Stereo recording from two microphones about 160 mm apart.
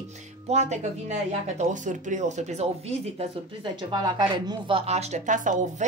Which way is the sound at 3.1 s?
30° right (ahead or behind).